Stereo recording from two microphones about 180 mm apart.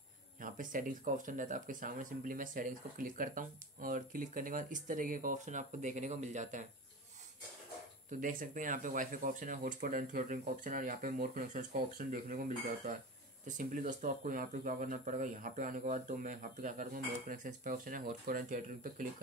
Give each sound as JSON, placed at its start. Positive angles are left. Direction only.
{"t": 0.4, "sound": "speech", "side_deg": -50}
{"t": 8.1, "sound": "speech", "side_deg": -50}